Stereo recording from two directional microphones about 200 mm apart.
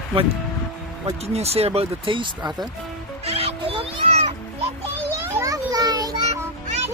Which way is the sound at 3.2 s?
30° right (ahead or behind).